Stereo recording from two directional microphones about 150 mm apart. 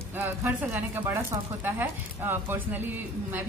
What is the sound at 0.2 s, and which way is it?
Speech, 15° right (ahead or behind).